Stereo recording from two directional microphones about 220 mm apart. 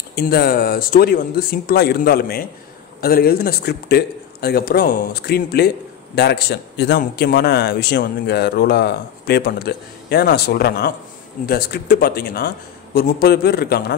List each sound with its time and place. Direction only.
0.1 s a man's voice: 45° left (ahead or behind)